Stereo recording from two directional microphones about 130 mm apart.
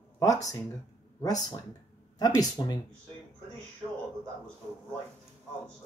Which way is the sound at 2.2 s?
30° left (ahead or behind).